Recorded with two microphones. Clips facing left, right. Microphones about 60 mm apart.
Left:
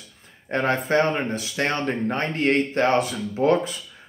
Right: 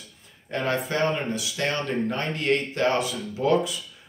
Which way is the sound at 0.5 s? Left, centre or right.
Left.